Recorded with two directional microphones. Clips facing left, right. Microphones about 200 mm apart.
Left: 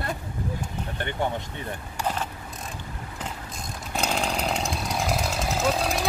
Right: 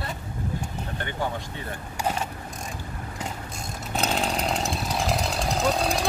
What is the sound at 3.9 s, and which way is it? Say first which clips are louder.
Chainsaw: right 1 dB; centre (ahead or behind).